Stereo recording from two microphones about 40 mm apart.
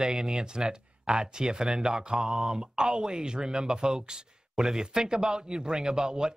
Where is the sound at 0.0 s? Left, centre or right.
Centre.